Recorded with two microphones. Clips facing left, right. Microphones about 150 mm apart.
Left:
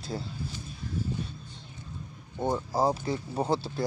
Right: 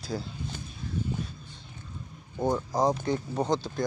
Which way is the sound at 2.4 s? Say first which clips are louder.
Right 1 dB; 5° left (ahead or behind).